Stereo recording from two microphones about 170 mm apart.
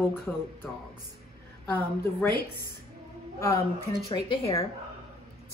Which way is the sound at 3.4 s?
15° left (ahead or behind).